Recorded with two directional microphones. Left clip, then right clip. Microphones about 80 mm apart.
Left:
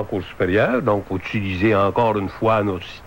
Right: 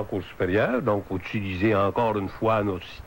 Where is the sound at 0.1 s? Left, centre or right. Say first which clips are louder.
Left 5 dB; right.